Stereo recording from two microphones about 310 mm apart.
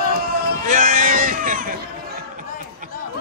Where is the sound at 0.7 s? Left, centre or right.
Right.